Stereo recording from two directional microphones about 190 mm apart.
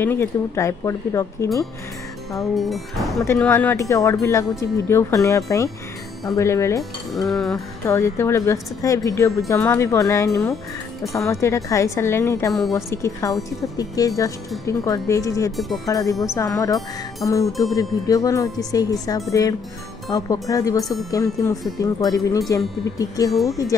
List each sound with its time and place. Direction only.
0.0 s speech: 10° left (ahead or behind)
2.5 s dishes: centre (ahead or behind)
3.3 s speech: 10° left (ahead or behind)
6.8 s dishes: centre (ahead or behind)
7.5 s speech: 15° left (ahead or behind)
15.5 s dishes: centre (ahead or behind)
15.9 s speech: 20° left (ahead or behind)